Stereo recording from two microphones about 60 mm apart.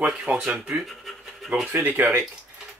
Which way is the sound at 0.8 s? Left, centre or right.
Centre.